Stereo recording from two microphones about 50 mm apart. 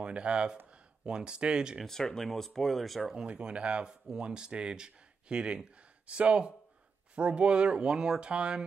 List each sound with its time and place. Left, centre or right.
0.0 s speech: right
1.9 s speech: centre
3.3 s speech: right